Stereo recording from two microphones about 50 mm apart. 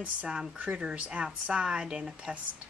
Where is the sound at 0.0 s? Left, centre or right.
Right.